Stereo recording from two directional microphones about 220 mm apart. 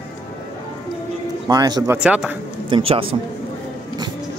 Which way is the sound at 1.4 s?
15° right (ahead or behind).